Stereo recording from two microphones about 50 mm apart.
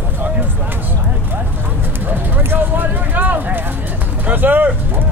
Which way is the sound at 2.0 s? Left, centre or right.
Right.